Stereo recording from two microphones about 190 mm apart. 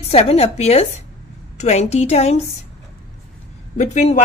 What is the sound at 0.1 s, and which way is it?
A woman's voice, 30° left (ahead or behind).